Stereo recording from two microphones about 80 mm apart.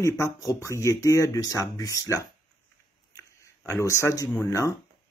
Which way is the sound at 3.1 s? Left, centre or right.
Left.